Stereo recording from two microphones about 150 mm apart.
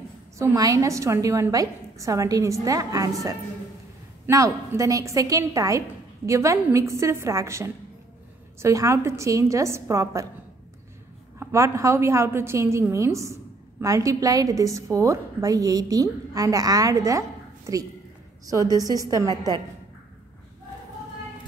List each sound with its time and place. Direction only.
0.4 s a woman's voice: 20° right (ahead or behind)
11.3 s a woman's voice: 20° right (ahead or behind)
18.4 s a woman's voice: 25° right (ahead or behind)